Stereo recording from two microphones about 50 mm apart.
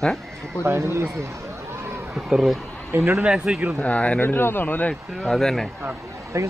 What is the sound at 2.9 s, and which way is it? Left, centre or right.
Speech, right.